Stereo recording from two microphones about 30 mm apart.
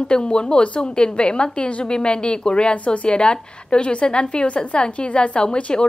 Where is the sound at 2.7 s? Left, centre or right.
Left.